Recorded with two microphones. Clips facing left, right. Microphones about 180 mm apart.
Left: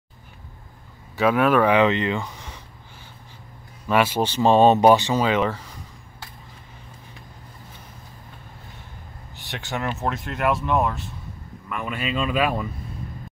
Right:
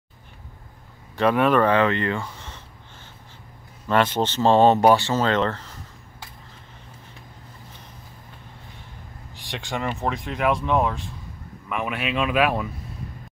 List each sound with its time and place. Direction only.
1.1 s speech: 5° left (ahead or behind)
3.8 s speech: 10° left (ahead or behind)
9.3 s speech: centre (ahead or behind)
12.0 s speech: 70° right (ahead or behind)